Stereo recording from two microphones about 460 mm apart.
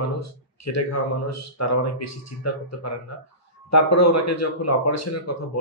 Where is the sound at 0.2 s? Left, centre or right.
Left.